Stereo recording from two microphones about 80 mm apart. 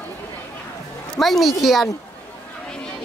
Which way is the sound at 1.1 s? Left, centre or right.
Centre.